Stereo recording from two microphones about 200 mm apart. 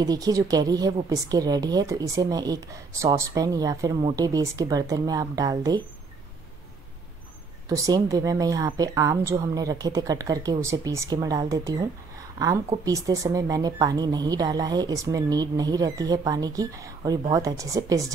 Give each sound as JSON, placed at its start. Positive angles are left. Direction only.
{"t": 0.0, "sound": "a woman's voice", "side_deg": -20}
{"t": 7.6, "sound": "a woman's voice", "side_deg": -15}